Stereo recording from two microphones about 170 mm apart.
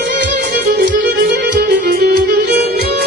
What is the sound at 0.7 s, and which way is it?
Music, 60° right (ahead or behind).